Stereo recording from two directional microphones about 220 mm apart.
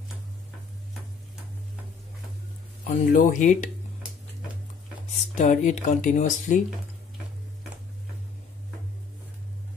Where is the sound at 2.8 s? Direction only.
35° left (ahead or behind).